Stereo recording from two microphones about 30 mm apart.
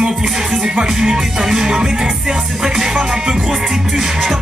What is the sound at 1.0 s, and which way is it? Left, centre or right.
Music, centre.